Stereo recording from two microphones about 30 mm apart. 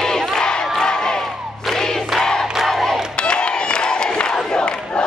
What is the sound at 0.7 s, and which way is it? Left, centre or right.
Crowd, left.